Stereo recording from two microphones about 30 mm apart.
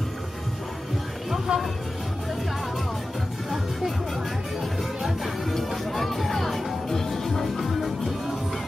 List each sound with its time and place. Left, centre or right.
1.5 s speech: right
5.5 s music: centre